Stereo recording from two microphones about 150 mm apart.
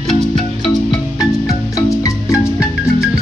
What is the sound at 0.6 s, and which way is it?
Marimba, 25° left (ahead or behind).